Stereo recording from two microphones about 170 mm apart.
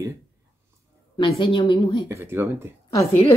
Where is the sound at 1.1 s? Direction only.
25° left (ahead or behind).